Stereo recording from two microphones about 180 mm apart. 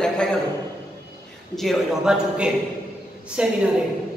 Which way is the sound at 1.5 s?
Centre (ahead or behind).